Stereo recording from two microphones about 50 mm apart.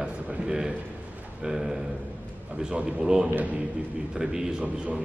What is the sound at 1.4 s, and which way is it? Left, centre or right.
A man's voice, centre.